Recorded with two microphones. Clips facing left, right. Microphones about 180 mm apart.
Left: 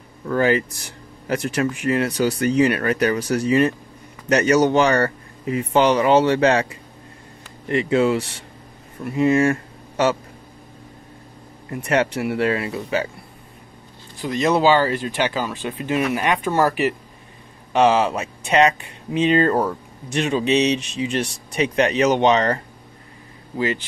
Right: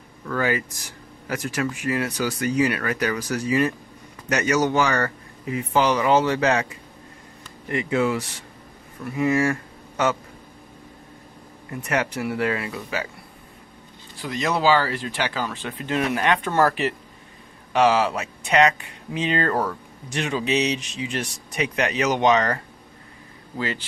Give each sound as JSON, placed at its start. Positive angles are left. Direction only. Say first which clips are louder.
{"t": 0.2, "sound": "speech", "louder": "left 6 dB", "side_deg": 30}
{"t": 7.7, "sound": "speech", "louder": "left 4 dB", "side_deg": 25}
{"t": 11.8, "sound": "speech", "louder": "left 5 dB", "side_deg": 30}
{"t": 14.2, "sound": "speech", "louder": "left 4 dB", "side_deg": 20}
{"t": 17.7, "sound": "speech", "louder": "left 2 dB", "side_deg": 25}